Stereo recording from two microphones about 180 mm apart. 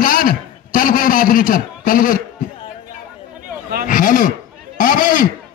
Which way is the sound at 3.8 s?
50° left (ahead or behind).